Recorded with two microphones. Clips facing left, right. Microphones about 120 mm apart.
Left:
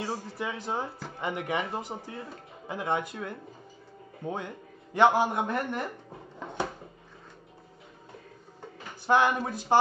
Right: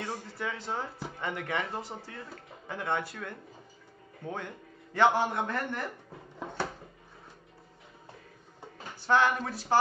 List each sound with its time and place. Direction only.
0.0 s a man's voice: 15° left (ahead or behind)
9.0 s speech: 15° left (ahead or behind)